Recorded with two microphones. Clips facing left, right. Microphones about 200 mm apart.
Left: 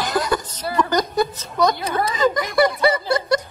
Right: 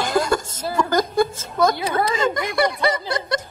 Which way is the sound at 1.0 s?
50° right (ahead or behind).